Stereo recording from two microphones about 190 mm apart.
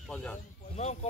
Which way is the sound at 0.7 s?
35° left (ahead or behind).